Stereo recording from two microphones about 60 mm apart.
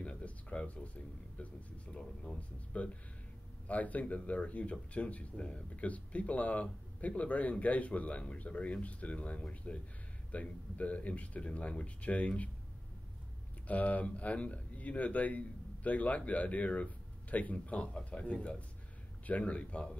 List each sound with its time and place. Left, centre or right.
0.0 s a sound: left
3.6 s speech: left
13.7 s speech: left